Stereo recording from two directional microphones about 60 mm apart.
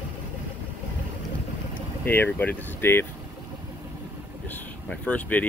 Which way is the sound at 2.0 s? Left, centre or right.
Left.